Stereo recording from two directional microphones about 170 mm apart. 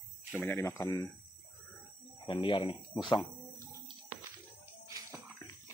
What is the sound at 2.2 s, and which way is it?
Speech, 30° left (ahead or behind).